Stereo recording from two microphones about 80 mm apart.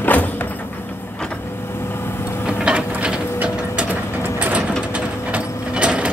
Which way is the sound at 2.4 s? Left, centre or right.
Centre.